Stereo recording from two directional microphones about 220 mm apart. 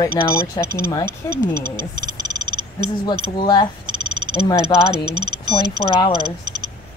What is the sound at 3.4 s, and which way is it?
Speech, 20° left (ahead or behind).